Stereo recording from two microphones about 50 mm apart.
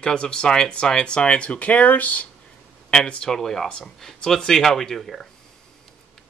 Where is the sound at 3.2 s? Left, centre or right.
Centre.